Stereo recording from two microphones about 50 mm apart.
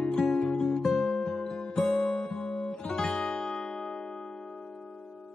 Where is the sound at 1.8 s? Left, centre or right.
Centre.